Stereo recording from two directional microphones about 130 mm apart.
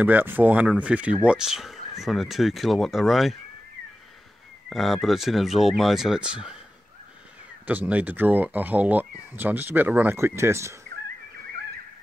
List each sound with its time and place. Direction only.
0.0 s speech: 15° right (ahead or behind)
4.6 s speech: centre (ahead or behind)
7.6 s speech: 10° right (ahead or behind)